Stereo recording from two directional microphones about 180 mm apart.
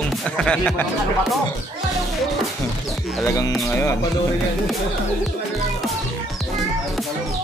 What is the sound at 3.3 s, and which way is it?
Speech, 20° left (ahead or behind).